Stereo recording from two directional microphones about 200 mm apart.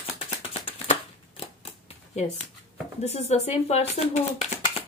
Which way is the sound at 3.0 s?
35° left (ahead or behind).